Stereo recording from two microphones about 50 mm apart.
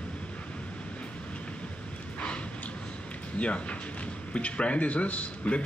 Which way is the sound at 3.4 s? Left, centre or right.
Left.